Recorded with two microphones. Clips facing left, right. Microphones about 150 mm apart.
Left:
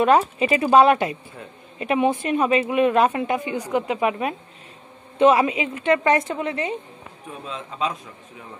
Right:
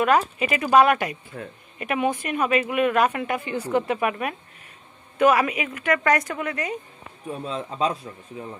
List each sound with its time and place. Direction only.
0.0 s speech: 30° left (ahead or behind)
7.2 s a man's voice: 35° right (ahead or behind)